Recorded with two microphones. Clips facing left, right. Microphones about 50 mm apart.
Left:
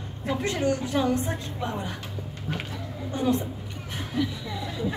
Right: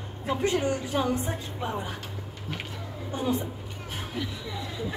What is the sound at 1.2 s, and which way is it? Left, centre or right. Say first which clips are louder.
Speech: left 1 dB; centre.